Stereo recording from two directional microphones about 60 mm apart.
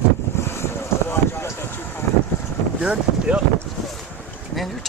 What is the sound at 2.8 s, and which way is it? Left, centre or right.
Speech, centre.